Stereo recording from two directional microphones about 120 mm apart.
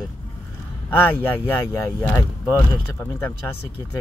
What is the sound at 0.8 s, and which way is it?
Speech, 15° left (ahead or behind).